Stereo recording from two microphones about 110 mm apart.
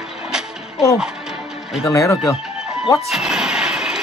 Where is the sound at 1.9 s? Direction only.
30° left (ahead or behind).